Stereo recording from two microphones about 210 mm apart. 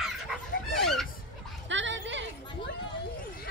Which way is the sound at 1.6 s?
60° right (ahead or behind).